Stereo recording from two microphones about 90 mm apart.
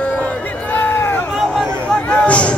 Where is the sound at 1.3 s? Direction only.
5° left (ahead or behind).